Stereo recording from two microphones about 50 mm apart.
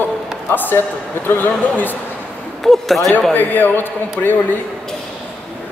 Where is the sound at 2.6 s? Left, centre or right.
Centre.